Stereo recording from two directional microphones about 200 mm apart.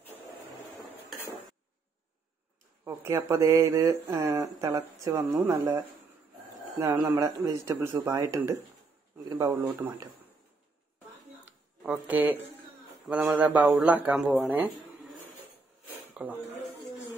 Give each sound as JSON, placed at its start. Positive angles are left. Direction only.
{"t": 2.8, "sound": "speech", "side_deg": -10}
{"t": 6.8, "sound": "speech", "side_deg": -15}
{"t": 11.4, "sound": "a sound", "side_deg": -5}
{"t": 13.1, "sound": "speech", "side_deg": -5}
{"t": 16.2, "sound": "speech", "side_deg": -5}